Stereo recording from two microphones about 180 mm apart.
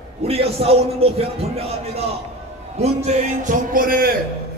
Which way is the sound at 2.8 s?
40° right (ahead or behind).